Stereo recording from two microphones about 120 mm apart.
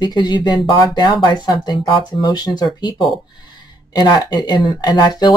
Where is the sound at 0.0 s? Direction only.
35° left (ahead or behind).